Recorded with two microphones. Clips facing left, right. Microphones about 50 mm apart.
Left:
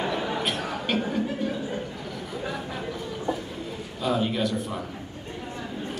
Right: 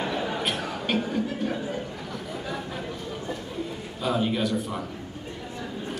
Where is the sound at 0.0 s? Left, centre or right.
Centre.